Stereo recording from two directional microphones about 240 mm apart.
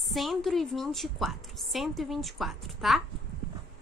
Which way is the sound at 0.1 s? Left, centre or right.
Centre.